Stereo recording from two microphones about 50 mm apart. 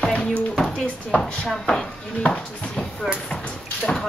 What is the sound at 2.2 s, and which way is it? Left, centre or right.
Speech, left.